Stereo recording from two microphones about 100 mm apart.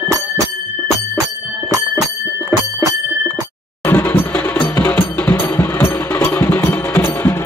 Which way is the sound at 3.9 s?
20° left (ahead or behind).